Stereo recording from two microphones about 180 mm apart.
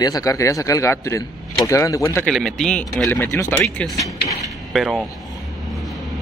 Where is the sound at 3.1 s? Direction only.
15° left (ahead or behind).